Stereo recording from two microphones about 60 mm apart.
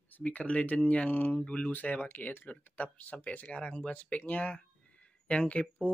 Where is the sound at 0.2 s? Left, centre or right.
Left.